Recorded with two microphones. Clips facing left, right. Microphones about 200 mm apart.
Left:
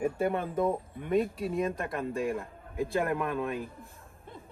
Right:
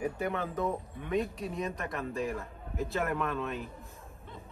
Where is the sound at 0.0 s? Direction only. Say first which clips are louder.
Left 4 dB; 30° left (ahead or behind).